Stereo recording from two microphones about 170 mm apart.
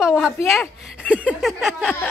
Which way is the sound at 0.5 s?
5° right (ahead or behind).